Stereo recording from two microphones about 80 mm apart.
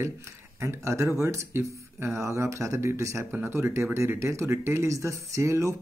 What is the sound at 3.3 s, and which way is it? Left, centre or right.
Speech, right.